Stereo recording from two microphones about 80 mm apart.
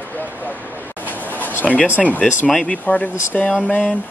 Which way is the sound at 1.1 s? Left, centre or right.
Left.